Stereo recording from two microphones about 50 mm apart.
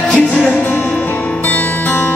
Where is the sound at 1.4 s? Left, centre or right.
Left.